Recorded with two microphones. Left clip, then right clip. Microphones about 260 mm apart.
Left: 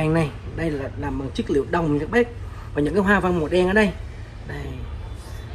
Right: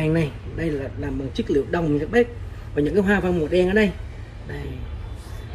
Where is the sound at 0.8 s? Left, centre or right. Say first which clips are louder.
Left 1 dB; left.